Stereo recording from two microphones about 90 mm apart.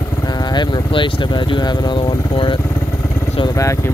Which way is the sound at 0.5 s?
65° left (ahead or behind).